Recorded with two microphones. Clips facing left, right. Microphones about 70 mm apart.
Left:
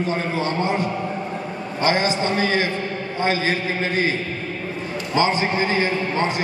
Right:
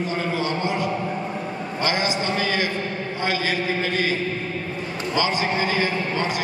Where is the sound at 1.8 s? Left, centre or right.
Left.